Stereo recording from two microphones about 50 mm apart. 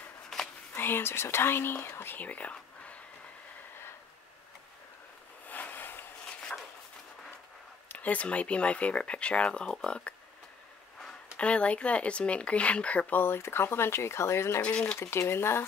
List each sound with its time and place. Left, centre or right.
0.3 s a sound: centre
0.7 s speech: left
2.1 s speech: left
5.5 s a sound: left
7.9 s speech: left
11.3 s speech: left
13.1 s speech: left
14.6 s speech: left
15.0 s speech: left